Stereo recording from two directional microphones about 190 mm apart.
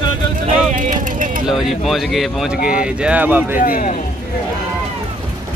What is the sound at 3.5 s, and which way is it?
Speech, 45° left (ahead or behind).